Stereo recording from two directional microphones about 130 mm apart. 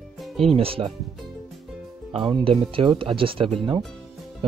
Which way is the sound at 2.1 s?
40° right (ahead or behind).